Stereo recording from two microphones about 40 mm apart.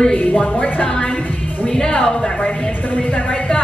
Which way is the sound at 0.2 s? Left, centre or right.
Left.